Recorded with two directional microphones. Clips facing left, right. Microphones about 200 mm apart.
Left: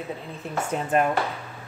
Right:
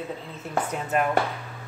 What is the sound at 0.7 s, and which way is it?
Speech, 30° left (ahead or behind).